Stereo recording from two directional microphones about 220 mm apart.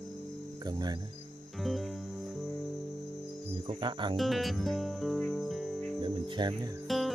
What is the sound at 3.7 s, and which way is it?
Speech, 20° right (ahead or behind).